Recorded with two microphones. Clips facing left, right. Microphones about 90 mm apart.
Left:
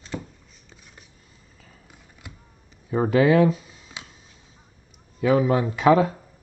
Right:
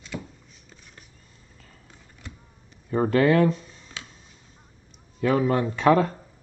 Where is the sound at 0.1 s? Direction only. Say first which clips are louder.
Left 2 dB; 35° left (ahead or behind).